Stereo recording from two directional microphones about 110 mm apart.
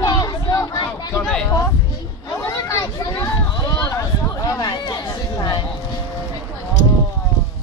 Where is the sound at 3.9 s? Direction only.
35° left (ahead or behind).